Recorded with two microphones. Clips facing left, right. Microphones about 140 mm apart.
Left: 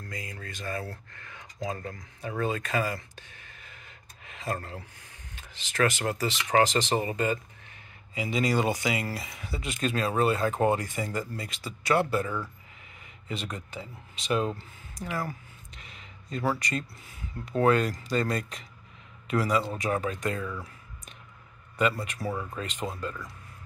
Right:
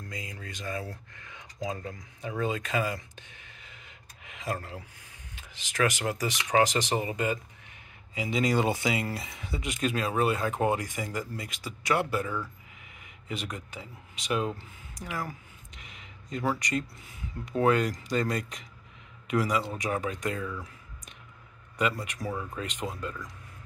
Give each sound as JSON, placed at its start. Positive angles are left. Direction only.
{"t": 0.0, "sound": "speech", "side_deg": -20}
{"t": 13.3, "sound": "speech", "side_deg": -15}
{"t": 14.6, "sound": "a sound", "side_deg": -15}
{"t": 16.5, "sound": "speech", "side_deg": -15}
{"t": 22.0, "sound": "speech", "side_deg": -15}